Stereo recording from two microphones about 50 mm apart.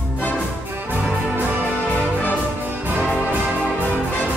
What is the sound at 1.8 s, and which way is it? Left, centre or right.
Music, left.